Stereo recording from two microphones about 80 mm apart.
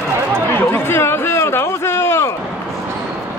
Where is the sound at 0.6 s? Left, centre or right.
Left.